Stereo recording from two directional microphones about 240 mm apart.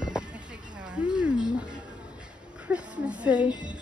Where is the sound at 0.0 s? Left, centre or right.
Centre.